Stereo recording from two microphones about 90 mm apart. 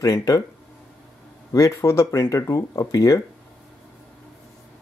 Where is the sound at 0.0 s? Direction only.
40° left (ahead or behind).